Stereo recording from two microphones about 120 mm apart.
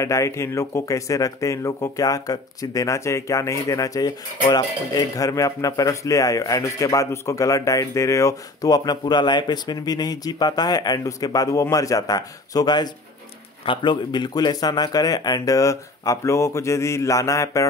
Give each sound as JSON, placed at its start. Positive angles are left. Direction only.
{"t": 0.0, "sound": "speech", "side_deg": 25}